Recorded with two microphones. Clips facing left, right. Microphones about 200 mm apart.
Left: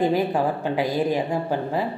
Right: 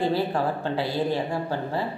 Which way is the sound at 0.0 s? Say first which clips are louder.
Left 3 dB; 15° left (ahead or behind).